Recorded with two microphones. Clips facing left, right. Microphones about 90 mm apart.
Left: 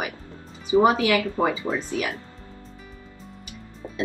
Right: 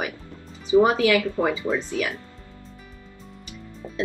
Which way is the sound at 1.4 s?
30° left (ahead or behind).